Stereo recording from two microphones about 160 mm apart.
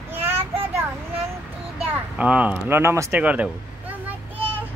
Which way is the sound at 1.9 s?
10° right (ahead or behind).